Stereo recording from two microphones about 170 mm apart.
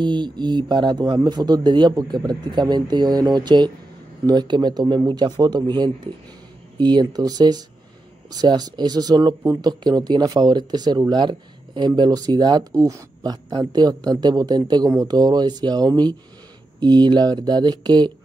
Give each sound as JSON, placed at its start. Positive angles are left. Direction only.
{"t": 0.0, "sound": "speech", "side_deg": -25}